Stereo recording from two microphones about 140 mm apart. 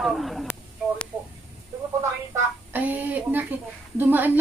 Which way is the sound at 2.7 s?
10° right (ahead or behind).